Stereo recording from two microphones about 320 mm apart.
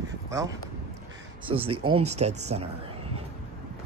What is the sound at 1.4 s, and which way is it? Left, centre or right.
Speech, centre.